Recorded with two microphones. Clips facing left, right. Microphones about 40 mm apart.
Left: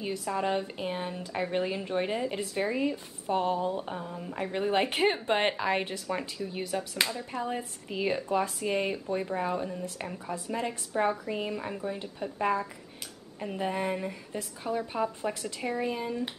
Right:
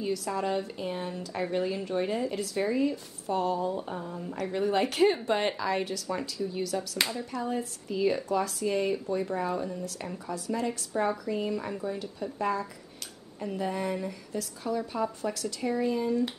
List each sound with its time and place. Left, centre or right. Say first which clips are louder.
0.0 s speech: right 1 dB; left
4.4 s speech: even; left
7.0 s speech: left 1 dB; centre
7.3 s speech: right 2 dB; left